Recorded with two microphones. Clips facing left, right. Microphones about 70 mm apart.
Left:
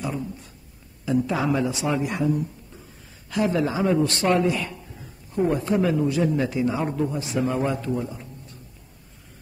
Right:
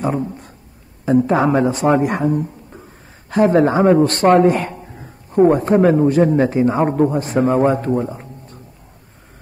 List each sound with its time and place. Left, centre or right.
0.0 s a man's voice: right